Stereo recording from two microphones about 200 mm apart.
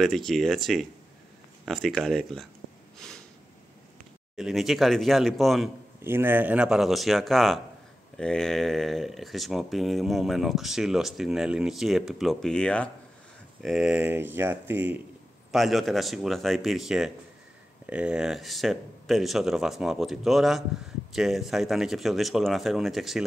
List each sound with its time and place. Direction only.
0.0 s speech: centre (ahead or behind)
2.6 s a sound: 70° right (ahead or behind)
4.4 s speech: centre (ahead or behind)
6.0 s speech: 10° right (ahead or behind)